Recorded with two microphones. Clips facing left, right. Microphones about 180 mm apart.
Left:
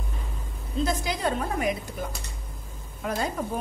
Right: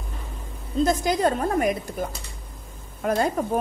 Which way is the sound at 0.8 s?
45° right (ahead or behind).